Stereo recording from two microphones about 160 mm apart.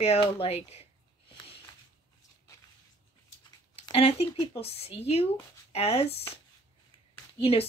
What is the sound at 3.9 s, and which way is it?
A woman's voice, 40° left (ahead or behind).